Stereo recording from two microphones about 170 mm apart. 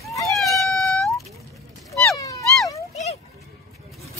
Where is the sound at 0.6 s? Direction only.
Centre (ahead or behind).